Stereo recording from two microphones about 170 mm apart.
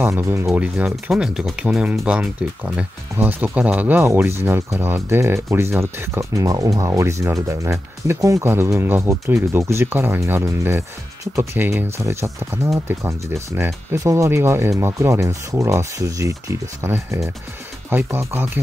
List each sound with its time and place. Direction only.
0.0 s speech: 15° right (ahead or behind)